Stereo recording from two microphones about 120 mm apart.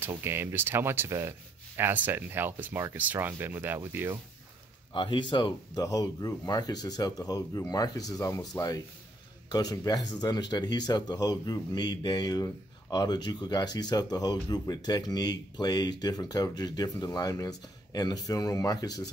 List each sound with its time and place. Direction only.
0.2 s speech: 20° right (ahead or behind)
4.9 s speech: 40° left (ahead or behind)